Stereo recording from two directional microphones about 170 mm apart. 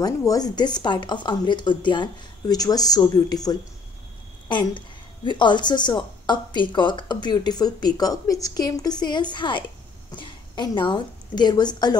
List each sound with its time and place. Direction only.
0.0 s a woman's voice: 20° left (ahead or behind)